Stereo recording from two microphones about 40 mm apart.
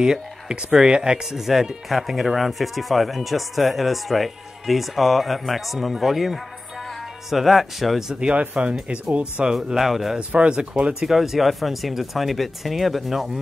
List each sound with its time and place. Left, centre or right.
0.0 s speech: centre
1.2 s speech: centre
7.2 s speech: centre
8.2 s speech: right
9.8 s speech: centre
10.1 s speech: right
10.9 s speech: centre